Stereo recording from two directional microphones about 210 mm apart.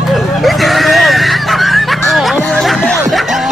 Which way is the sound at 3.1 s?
Centre (ahead or behind).